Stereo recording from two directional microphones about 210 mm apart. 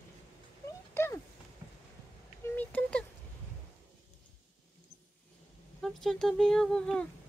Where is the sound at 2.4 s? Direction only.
10° left (ahead or behind).